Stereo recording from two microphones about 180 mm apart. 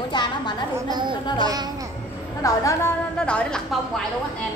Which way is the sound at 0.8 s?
20° right (ahead or behind).